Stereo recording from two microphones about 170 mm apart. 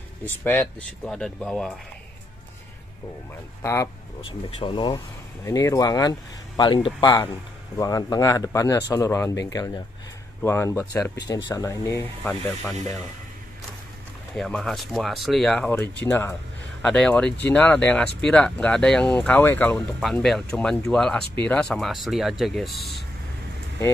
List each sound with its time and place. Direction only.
0.2 s speech: 10° left (ahead or behind)
3.6 s speech: 15° left (ahead or behind)
4.2 s speech: 30° left (ahead or behind)
4.9 s speech: 20° left (ahead or behind)
14.3 s speech: 5° left (ahead or behind)
20.0 s speech: centre (ahead or behind)